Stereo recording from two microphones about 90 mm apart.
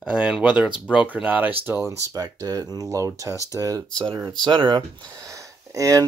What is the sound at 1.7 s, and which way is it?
Speech, 30° right (ahead or behind).